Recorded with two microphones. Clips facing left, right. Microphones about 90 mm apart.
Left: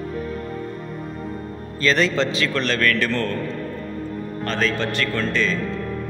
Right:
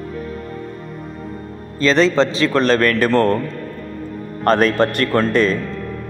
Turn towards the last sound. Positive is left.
turn(degrees=-50)  # may be behind; listen again after turning